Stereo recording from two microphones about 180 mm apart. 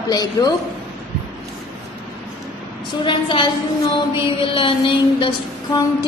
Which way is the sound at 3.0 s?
25° left (ahead or behind).